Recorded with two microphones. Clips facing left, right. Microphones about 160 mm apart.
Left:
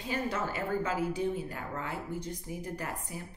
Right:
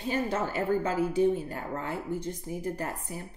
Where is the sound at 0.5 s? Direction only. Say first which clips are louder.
Right 6 dB; 30° right (ahead or behind).